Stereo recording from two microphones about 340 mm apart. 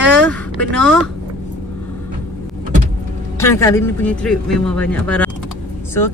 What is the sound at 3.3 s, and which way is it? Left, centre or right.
Speech, centre.